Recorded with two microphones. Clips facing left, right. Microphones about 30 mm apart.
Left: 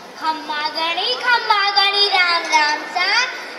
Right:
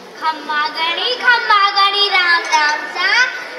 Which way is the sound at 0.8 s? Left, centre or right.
Centre.